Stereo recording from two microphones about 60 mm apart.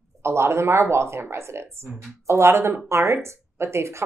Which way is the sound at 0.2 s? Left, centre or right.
Right.